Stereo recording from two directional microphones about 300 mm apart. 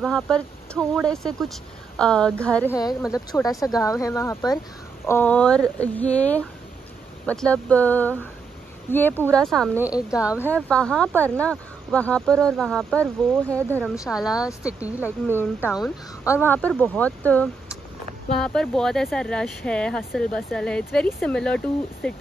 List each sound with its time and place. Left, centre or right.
0.0 s speech: centre